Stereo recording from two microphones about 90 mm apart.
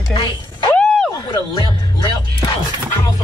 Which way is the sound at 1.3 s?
50° left (ahead or behind).